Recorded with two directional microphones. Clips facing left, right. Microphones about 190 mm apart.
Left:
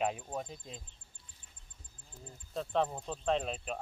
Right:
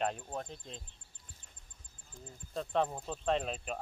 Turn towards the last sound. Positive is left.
turn(degrees=0)  # may be behind; listen again after turning